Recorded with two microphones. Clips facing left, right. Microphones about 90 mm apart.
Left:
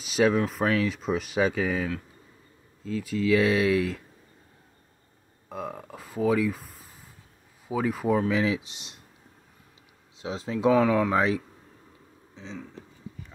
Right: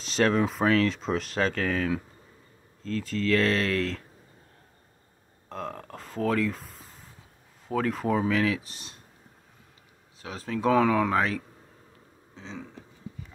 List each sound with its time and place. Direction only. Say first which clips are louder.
0.0 s speech: left 1 dB; 5° left (ahead or behind)
5.5 s speech: left 1 dB; 10° left (ahead or behind)
10.2 s speech: left 3 dB; 20° left (ahead or behind)
10.7 s speech: left 1 dB; 5° left (ahead or behind)
11.1 s speech: left 2 dB; 15° left (ahead or behind)